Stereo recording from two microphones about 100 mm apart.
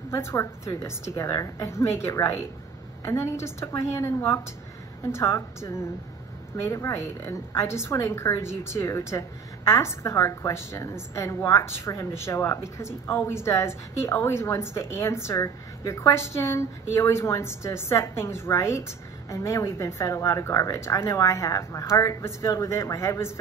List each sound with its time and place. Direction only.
0.1 s a woman's voice: 30° left (ahead or behind)